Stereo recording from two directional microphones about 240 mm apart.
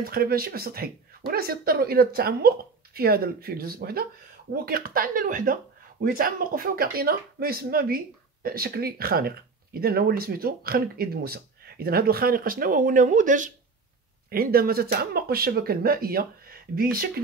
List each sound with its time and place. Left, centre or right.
0.0 s speech: right